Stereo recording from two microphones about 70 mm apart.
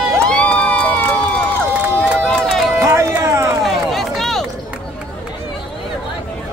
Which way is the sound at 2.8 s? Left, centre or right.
Right.